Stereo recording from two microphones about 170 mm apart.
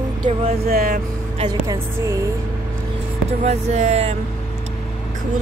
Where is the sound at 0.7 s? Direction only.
60° right (ahead or behind).